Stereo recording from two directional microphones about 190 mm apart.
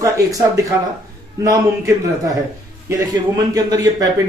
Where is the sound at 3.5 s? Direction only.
20° right (ahead or behind).